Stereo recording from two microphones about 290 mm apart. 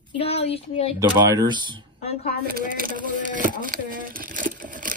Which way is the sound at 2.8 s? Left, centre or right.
Right.